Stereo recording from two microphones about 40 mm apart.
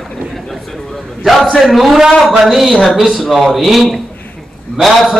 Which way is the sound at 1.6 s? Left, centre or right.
Centre.